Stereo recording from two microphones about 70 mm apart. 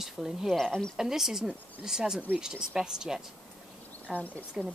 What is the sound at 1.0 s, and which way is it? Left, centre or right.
Speech, centre.